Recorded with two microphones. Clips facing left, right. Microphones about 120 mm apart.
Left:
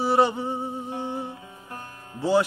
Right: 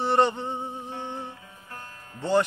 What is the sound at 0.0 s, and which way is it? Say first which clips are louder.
Music: left 1 dB; 5° left (ahead or behind).